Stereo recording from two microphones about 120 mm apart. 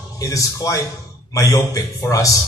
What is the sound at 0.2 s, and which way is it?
Speech, 30° left (ahead or behind).